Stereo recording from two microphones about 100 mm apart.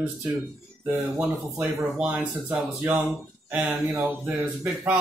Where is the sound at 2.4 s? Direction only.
30° right (ahead or behind).